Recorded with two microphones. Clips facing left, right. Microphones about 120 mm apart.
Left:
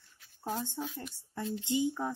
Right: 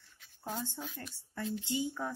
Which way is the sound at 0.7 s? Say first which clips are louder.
Left 5 dB; 15° left (ahead or behind).